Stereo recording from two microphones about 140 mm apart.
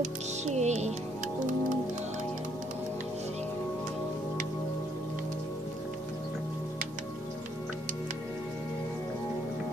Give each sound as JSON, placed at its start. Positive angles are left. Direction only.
{"t": 0.0, "sound": "music", "side_deg": -60}